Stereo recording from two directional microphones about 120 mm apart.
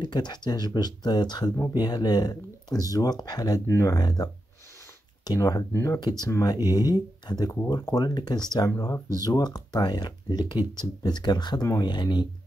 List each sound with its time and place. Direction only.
0.0 s speech: 35° left (ahead or behind); by 5.9 s 20° left (ahead or behind)
5.9 s speech: 35° left (ahead or behind)